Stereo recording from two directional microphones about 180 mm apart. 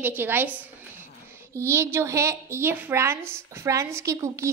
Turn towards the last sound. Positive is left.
turn(degrees=-15)  # may be behind; listen again after turning